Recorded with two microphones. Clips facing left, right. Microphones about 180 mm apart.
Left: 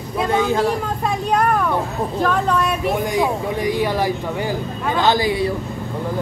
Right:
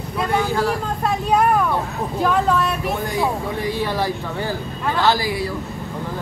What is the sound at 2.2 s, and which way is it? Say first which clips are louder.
Speech: right 1 dB; 5° right (ahead or behind).